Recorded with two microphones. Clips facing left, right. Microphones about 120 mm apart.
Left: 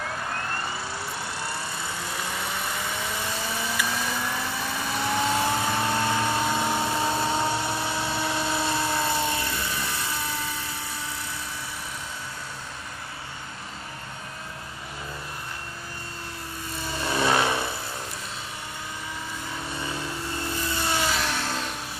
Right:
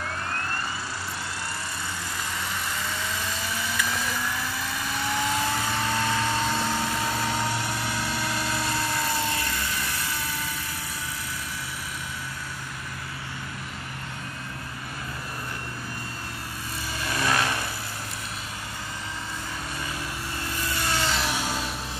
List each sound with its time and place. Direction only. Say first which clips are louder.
2.2 s vehicle: left 1 dB; 20° left (ahead or behind)
4.1 s vehicle: left 1 dB; 25° left (ahead or behind)
17.0 s vehicle: left 3 dB; 25° left (ahead or behind)
19.8 s vehicle: left 3 dB; 25° left (ahead or behind)
20.8 s a sound: left 1 dB; 20° left (ahead or behind)
21.1 s music: even; 5° right (ahead or behind)